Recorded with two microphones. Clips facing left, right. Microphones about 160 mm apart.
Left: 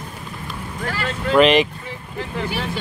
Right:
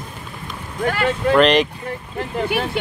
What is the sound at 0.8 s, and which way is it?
Vehicle, 60° right (ahead or behind).